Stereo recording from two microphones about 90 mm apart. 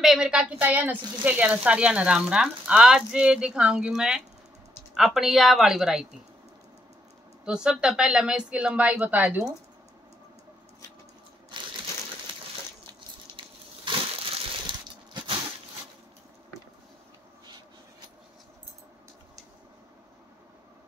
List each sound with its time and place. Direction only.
0.0 s a woman's voice: 5° right (ahead or behind)
7.4 s speech: 10° right (ahead or behind)
13.4 s a sound: 75° right (ahead or behind)
13.8 s crushing: 70° right (ahead or behind)